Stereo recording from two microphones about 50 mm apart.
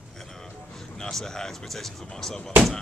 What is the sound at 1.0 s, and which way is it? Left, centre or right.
Speech, centre.